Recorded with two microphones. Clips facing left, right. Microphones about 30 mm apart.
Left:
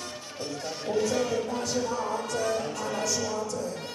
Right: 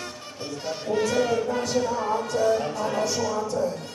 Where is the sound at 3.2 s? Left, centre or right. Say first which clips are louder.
Right 6 dB; right.